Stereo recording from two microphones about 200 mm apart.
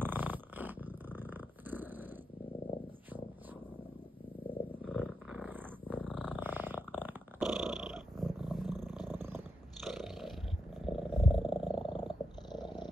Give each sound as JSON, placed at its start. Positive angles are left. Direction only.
{"t": 0.0, "sound": "purr", "side_deg": -10}
{"t": 4.8, "sound": "purr", "side_deg": 5}
{"t": 5.3, "sound": "purr", "side_deg": -5}
{"t": 9.1, "sound": "purr", "side_deg": -10}
{"t": 9.8, "sound": "roar", "side_deg": 0}
{"t": 10.9, "sound": "purr", "side_deg": -5}
{"t": 11.8, "sound": "purr", "side_deg": 25}